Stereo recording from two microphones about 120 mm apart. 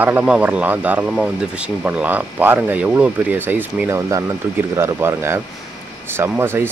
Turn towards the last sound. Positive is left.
turn(degrees=-20)  # may be behind; listen again after turning